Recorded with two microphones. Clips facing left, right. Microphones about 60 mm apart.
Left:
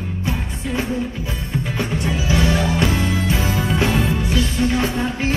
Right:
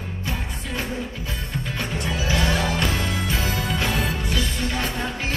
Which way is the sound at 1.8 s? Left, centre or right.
Centre.